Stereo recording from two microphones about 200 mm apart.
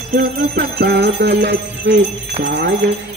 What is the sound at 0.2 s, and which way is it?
Jingle bell, 50° right (ahead or behind).